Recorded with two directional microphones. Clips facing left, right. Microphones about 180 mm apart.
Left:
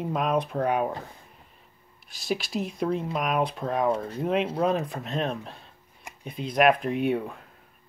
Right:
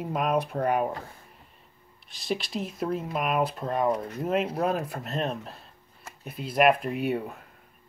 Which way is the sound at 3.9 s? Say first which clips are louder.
Left 1 dB; 30° left (ahead or behind).